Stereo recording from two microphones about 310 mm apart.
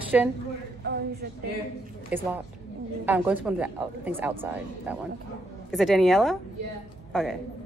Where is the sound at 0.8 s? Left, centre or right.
Right.